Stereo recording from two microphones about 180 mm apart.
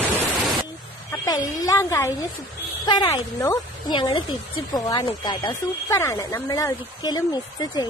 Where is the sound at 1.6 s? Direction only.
15° left (ahead or behind).